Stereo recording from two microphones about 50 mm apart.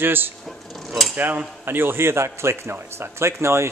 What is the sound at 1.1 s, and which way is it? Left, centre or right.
Cutlery, right.